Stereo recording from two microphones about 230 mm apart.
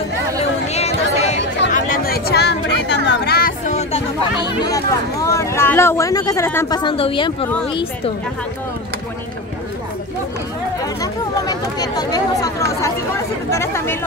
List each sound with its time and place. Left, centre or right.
0.4 s a sound: left
1.7 s speech: left
11.0 s speech: centre